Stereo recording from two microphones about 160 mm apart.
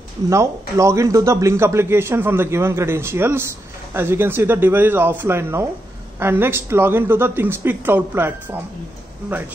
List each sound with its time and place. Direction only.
0.3 s speech: 20° right (ahead or behind)